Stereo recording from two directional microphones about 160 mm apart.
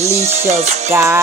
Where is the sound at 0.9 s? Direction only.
15° right (ahead or behind).